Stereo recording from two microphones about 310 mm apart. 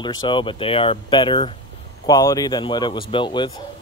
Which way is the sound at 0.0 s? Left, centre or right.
Centre.